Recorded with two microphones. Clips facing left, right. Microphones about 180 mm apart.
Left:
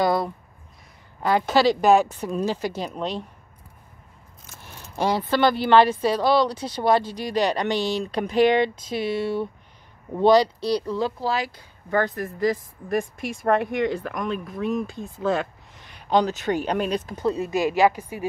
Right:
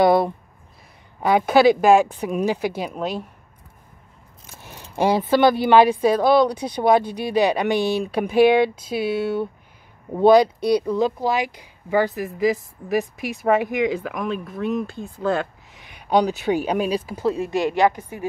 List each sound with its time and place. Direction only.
0.0 s a sound: 25° right (ahead or behind)
1.2 s speech: 15° right (ahead or behind)
4.9 s speech: 15° right (ahead or behind)
16.2 s speech: 10° right (ahead or behind); by 18.2 s 10° left (ahead or behind)